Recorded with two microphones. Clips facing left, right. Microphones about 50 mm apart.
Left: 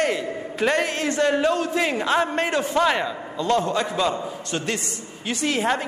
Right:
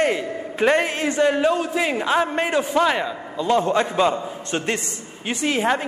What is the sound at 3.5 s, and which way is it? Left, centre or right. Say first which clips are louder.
A man's voice: right 3 dB; right.